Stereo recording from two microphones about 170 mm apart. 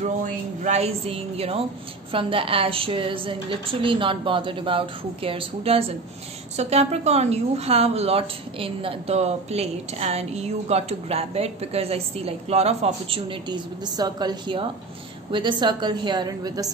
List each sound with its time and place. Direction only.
0.0 s a woman's voice: 45° right (ahead or behind); by 16.7 s 20° right (ahead or behind)